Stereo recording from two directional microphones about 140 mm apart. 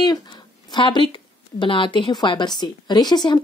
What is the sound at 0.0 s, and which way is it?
A woman's voice, 30° left (ahead or behind).